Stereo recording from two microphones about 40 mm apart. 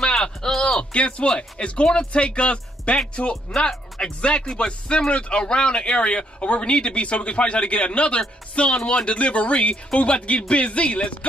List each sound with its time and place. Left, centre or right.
0.0 s speech: centre